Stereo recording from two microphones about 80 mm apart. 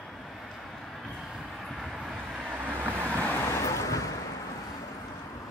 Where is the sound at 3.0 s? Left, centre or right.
Centre.